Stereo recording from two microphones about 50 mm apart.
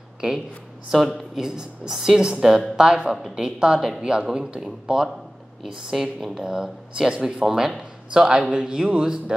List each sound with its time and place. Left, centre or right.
1.3 s speech: centre